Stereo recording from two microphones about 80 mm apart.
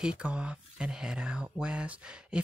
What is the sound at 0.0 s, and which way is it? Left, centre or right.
Speech, centre.